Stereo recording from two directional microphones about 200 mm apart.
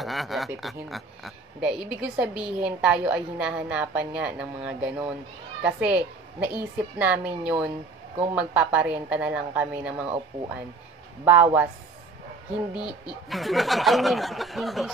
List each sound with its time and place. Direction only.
0.0 s a woman's voice: centre (ahead or behind)
11.2 s a woman's voice: 10° right (ahead or behind)
12.7 s a woman's voice: 5° right (ahead or behind)